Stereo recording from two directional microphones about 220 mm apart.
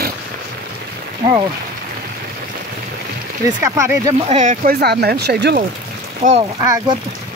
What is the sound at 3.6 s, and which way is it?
Speech, 15° right (ahead or behind).